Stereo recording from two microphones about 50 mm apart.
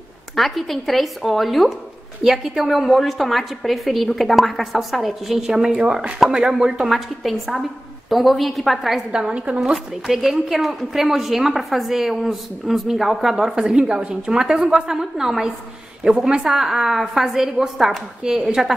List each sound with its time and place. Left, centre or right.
0.4 s a woman's voice: centre
9.1 s a woman's voice: centre
9.6 s a woman's voice: centre